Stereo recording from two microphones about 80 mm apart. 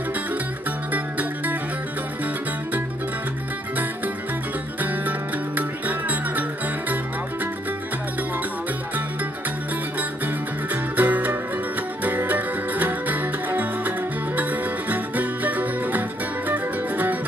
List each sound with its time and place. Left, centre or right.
0.9 s music: right
4.8 s music: right
9.9 s music: right